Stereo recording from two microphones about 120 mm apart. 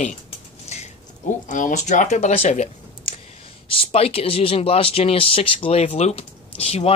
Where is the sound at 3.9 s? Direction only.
55° left (ahead or behind).